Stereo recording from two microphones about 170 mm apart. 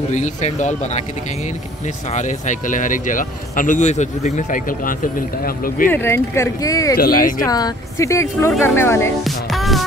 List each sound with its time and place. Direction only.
0.1 s speech: 45° left (ahead or behind)
2.1 s speech: 45° left (ahead or behind)
5.9 s speech: 15° left (ahead or behind)
7.0 s speech: 60° left (ahead or behind)
7.4 s speech: 20° left (ahead or behind)
9.2 s music: centre (ahead or behind)